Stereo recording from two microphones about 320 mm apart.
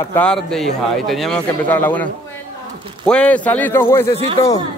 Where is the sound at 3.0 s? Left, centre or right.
Centre.